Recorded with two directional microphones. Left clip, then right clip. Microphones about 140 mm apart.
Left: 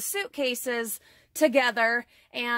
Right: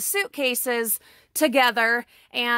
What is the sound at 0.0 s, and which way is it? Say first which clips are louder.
A woman's voice: right 4 dB; 30° right (ahead or behind).